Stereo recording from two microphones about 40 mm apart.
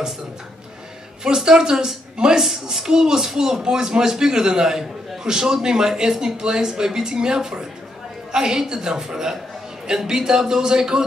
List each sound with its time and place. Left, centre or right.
1.2 s speech: centre